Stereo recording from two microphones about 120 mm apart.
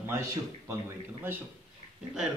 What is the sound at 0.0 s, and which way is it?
A man's voice, 25° right (ahead or behind).